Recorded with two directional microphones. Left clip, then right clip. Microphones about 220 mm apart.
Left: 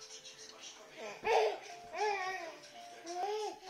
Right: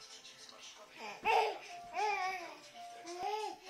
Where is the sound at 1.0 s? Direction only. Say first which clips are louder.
Even; 15° right (ahead or behind).